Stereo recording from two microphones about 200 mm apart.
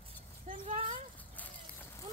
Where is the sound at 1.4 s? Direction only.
10° left (ahead or behind).